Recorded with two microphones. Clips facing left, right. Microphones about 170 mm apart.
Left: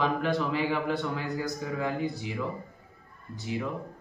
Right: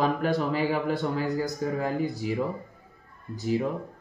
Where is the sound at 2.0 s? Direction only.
45° right (ahead or behind).